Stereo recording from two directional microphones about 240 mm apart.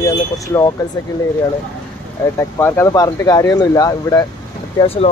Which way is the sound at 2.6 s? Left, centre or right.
Centre.